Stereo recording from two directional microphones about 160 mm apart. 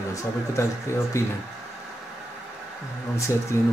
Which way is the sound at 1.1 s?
20° left (ahead or behind).